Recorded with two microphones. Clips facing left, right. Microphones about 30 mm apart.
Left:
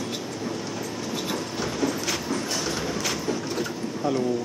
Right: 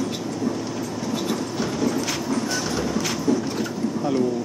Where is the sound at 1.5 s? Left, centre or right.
Centre.